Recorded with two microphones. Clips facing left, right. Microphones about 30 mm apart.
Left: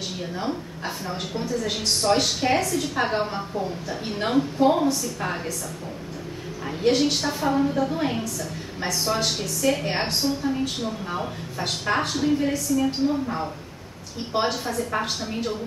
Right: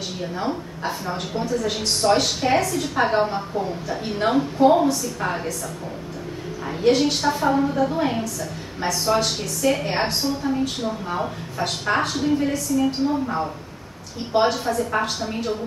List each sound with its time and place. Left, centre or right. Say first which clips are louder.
0.4 s a woman's voice: right 3 dB; centre
6.6 s a woman's voice: right 2 dB; centre
14.3 s a woman's voice: right 5 dB; centre